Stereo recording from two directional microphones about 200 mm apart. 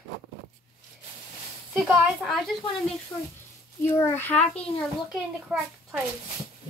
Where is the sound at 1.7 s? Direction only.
Centre (ahead or behind).